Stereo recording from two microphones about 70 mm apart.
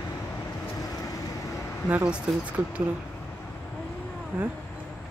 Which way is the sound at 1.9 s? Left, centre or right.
Centre.